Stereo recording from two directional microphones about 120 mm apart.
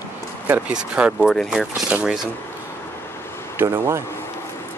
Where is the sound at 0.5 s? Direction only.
10° right (ahead or behind).